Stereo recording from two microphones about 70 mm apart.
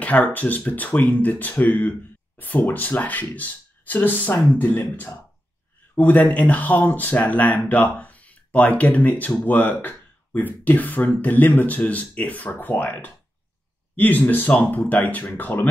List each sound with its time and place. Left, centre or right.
0.0 s speech: left